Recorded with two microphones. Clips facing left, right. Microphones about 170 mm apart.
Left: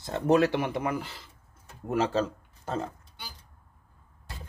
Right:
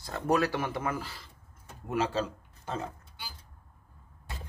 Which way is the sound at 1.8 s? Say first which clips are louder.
Left 3 dB; 45° left (ahead or behind).